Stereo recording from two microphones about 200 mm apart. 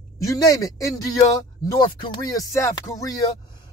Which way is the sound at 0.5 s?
15° left (ahead or behind).